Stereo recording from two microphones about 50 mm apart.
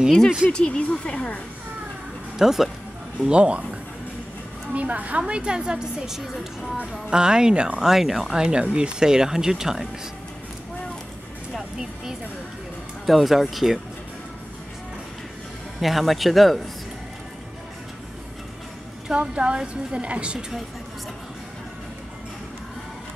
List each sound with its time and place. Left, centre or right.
0.5 s speech: centre
2.3 s speech: centre
3.3 s a woman's voice: right
4.7 s a woman's voice: right
5.2 s speech: centre
13.0 s speech: centre
15.8 s speech: centre
19.1 s a woman's voice: right